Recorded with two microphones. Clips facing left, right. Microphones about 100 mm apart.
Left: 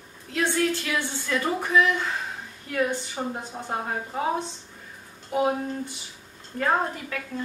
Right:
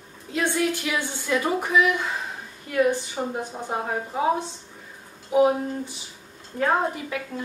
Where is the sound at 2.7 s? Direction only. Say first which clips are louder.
Right 4 dB; 5° right (ahead or behind).